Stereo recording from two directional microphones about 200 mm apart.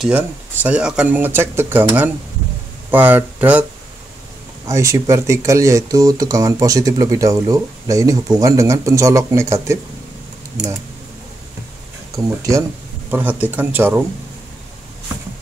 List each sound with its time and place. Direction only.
0.0 s speech: 5° right (ahead or behind)
4.6 s speech: 15° right (ahead or behind)
12.4 s speech: 15° right (ahead or behind)